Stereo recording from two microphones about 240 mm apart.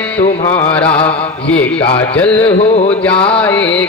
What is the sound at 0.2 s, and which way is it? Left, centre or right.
Music, left.